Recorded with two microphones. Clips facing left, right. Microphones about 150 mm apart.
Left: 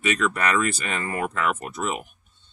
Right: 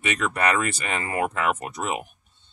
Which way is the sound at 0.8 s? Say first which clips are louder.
Right 2 dB; 15° right (ahead or behind).